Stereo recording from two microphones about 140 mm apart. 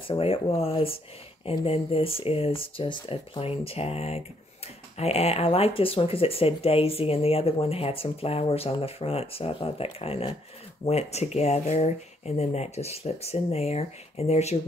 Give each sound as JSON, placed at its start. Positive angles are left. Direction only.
{"t": 0.1, "sound": "speech", "side_deg": 45}